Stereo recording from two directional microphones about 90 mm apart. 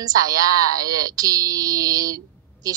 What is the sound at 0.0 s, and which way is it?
Speech, 45° right (ahead or behind).